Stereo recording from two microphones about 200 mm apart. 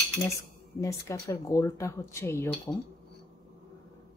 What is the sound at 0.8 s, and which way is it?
Speech, 15° left (ahead or behind).